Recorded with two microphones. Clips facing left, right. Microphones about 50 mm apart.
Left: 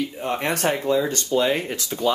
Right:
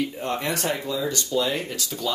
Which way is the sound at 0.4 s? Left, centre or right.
Left.